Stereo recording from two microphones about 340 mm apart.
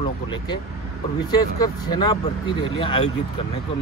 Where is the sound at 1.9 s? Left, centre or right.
Centre.